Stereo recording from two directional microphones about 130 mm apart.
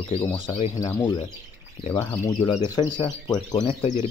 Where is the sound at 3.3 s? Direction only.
35° left (ahead or behind).